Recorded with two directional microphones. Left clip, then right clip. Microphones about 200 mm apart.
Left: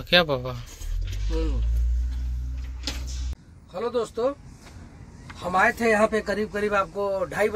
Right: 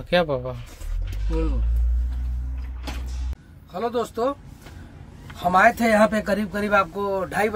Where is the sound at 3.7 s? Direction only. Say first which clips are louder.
Right 1 dB; 20° right (ahead or behind).